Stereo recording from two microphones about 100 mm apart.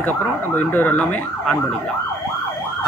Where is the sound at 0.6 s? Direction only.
20° left (ahead or behind).